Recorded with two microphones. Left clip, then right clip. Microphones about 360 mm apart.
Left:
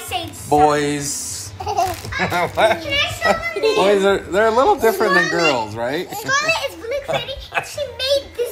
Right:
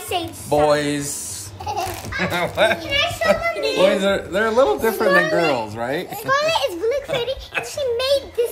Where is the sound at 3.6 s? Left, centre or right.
Centre.